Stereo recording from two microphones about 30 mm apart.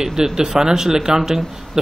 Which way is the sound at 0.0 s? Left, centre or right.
Centre.